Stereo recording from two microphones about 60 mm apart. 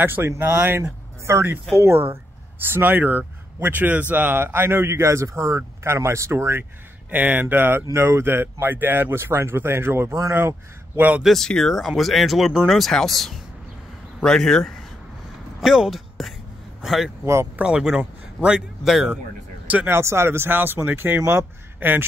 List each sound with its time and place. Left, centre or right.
0.0 s speech: right
2.7 s speech: right
7.1 s speech: right
11.0 s speech: right
11.2 s speech: centre
15.6 s speech: centre
16.2 s a sound: centre
16.8 s a man's voice: centre
17.6 s speech: centre
19.9 s speech: right